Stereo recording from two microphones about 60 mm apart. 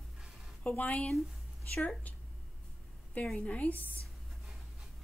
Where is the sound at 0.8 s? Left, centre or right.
Left.